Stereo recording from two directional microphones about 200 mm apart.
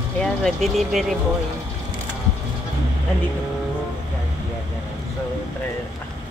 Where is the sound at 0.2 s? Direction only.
Centre (ahead or behind).